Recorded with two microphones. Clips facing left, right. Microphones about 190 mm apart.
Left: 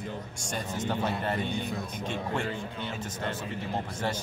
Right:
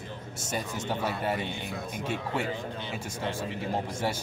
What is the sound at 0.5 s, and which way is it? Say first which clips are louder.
Speech: left 1 dB; 10° right (ahead or behind).